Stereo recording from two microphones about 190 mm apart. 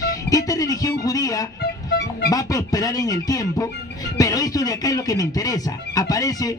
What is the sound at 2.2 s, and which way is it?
A man's voice, 20° left (ahead or behind).